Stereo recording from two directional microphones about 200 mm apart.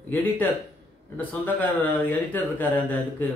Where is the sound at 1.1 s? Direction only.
10° left (ahead or behind).